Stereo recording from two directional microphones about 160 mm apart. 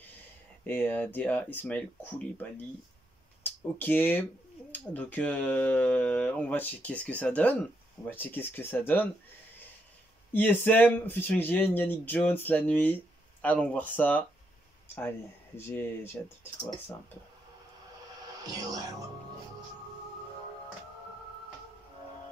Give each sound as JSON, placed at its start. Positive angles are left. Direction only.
{"t": 0.7, "sound": "speech", "side_deg": 10}
{"t": 10.3, "sound": "speech", "side_deg": 10}
{"t": 15.5, "sound": "speech", "side_deg": 15}
{"t": 18.4, "sound": "speech", "side_deg": -25}